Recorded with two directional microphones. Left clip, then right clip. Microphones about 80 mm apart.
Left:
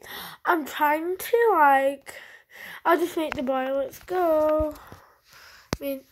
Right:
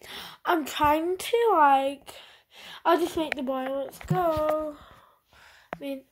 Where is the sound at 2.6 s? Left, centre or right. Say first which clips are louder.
Left 1 dB; right.